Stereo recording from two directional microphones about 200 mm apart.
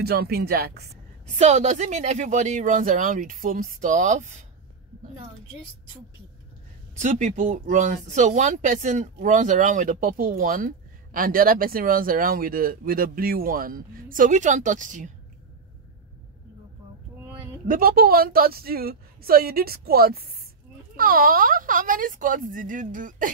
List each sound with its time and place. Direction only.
0.0 s speech: 50° right (ahead or behind)
1.4 s speech: 35° right (ahead or behind)
7.0 s speech: 35° right (ahead or behind)
17.6 s speech: 45° right (ahead or behind)